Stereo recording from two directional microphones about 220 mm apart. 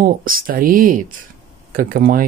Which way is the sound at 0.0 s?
40° right (ahead or behind).